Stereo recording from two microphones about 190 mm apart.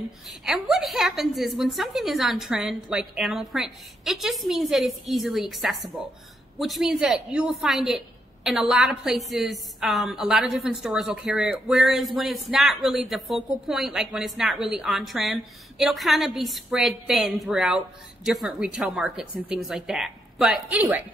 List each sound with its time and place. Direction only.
0.3 s a woman's voice: centre (ahead or behind)